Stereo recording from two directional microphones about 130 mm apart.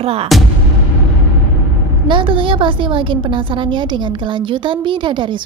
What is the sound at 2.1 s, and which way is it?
A woman's voice, 40° right (ahead or behind).